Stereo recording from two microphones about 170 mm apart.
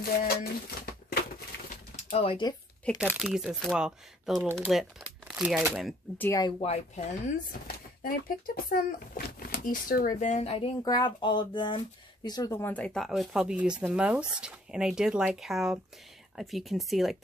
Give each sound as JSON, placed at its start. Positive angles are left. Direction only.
{"t": 0.0, "sound": "speech", "side_deg": 60}
{"t": 2.1, "sound": "speech", "side_deg": 30}
{"t": 2.9, "sound": "speech", "side_deg": 5}
{"t": 6.1, "sound": "speech", "side_deg": 10}
{"t": 7.2, "sound": "speech", "side_deg": 60}
{"t": 10.8, "sound": "speech", "side_deg": 25}